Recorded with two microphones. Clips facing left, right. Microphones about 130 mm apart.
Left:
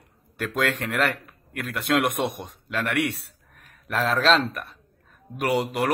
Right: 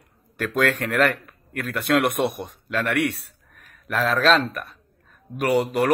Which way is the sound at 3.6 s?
30° left (ahead or behind).